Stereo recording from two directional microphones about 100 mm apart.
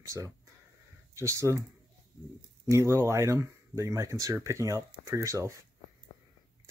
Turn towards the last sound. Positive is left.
turn(degrees=-30)  # may be behind; listen again after turning